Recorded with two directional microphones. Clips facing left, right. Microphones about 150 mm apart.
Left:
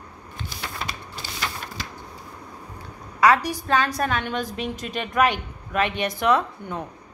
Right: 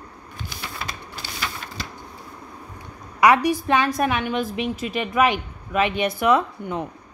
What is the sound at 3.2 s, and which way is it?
A woman's voice, 15° right (ahead or behind).